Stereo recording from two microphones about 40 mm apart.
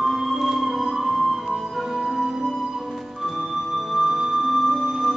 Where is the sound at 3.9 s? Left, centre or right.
Centre.